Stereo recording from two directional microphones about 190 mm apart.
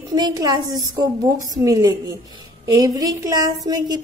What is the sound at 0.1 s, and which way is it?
A woman's voice, 20° right (ahead or behind).